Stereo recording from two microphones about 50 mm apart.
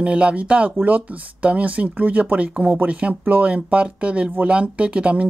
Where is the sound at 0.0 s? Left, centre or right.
Right.